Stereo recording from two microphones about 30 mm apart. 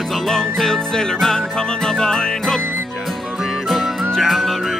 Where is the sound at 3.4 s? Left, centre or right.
Centre.